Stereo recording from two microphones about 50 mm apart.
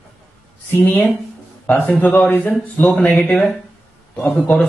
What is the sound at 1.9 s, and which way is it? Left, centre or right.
Speech, left.